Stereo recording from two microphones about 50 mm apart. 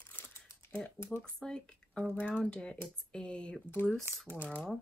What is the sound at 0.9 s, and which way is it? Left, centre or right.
Speech, left.